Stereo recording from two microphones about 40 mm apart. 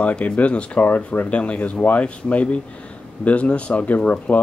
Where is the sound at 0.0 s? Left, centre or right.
Left.